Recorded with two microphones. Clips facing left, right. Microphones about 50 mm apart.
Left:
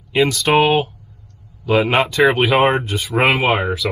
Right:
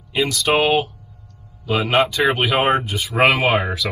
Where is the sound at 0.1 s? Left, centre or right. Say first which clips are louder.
Left 3 dB; left.